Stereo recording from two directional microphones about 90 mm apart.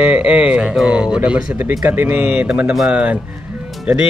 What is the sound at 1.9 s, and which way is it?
Speech, 20° right (ahead or behind).